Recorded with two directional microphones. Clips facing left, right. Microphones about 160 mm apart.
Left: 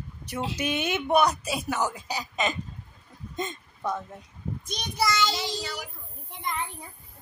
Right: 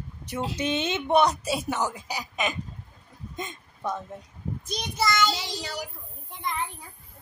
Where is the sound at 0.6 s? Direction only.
25° right (ahead or behind).